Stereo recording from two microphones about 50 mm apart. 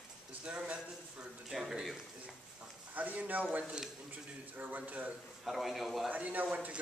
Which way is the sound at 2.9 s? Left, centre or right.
Right.